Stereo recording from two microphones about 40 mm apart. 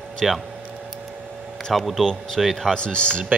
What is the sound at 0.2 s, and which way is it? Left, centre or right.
Speech, centre.